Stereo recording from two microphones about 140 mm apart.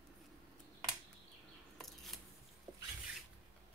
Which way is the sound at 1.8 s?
Centre (ahead or behind).